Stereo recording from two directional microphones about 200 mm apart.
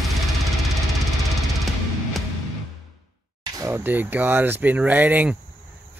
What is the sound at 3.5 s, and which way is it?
Speech, 15° right (ahead or behind).